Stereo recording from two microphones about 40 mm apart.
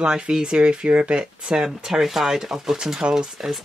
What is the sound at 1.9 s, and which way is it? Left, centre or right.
Speech, centre.